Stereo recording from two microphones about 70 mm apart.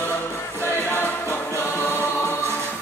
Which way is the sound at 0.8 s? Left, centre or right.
Left.